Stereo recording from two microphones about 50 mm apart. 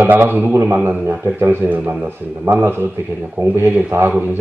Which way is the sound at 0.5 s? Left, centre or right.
Right.